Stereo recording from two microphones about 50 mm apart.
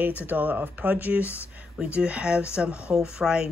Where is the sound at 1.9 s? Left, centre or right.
Right.